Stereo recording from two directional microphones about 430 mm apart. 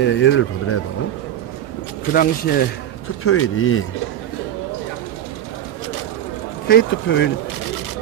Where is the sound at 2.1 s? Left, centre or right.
Centre.